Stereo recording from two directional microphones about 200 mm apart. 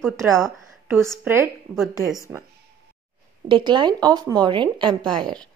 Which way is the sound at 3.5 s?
25° right (ahead or behind).